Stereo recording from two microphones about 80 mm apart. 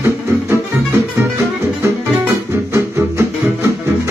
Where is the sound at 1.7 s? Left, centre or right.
Right.